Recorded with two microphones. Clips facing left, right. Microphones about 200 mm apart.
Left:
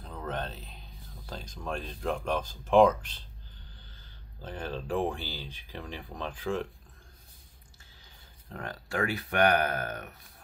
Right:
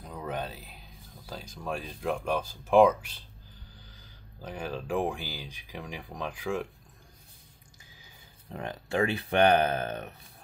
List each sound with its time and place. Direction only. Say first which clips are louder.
0.0 s speech: right 1 dB; 10° right (ahead or behind)
8.0 s speech: right 2 dB; 20° right (ahead or behind)